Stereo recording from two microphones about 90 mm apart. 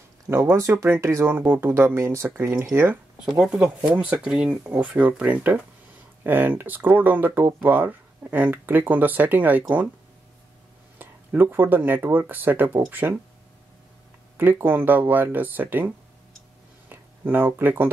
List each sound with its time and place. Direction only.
0.3 s speech: 30° right (ahead or behind)
3.2 s speech: 5° right (ahead or behind)
11.5 s speech: 20° right (ahead or behind)
14.3 s speech: 20° right (ahead or behind)
16.9 s speech: 20° right (ahead or behind)